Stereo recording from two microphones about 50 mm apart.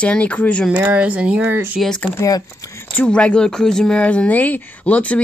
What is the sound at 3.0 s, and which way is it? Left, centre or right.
Speech, left.